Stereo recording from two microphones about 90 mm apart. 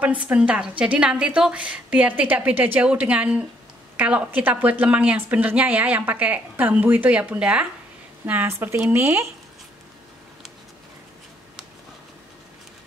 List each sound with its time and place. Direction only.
0.0 s a woman's voice: 15° right (ahead or behind)
8.3 s speech: 25° right (ahead or behind)